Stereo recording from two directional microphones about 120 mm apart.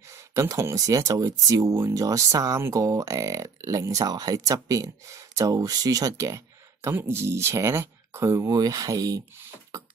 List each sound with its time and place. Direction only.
0.3 s speech: 25° right (ahead or behind)